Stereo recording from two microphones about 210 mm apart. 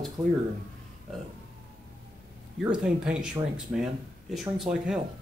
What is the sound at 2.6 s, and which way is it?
Speech, 5° right (ahead or behind).